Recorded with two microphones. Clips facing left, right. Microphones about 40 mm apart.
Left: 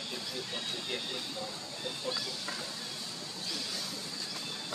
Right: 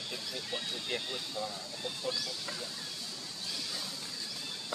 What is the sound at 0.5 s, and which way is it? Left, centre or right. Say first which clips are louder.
Speech: right 2 dB; centre.